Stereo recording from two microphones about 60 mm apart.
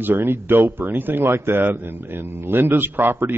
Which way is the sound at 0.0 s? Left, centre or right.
Right.